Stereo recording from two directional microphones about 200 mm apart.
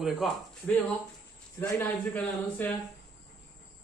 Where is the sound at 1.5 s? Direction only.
10° left (ahead or behind).